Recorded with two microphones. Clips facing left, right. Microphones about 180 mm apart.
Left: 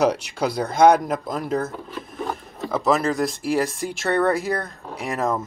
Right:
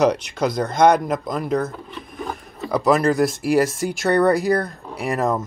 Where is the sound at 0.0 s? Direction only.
5° left (ahead or behind).